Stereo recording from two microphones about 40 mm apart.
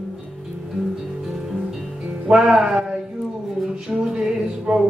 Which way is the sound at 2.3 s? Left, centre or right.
Right.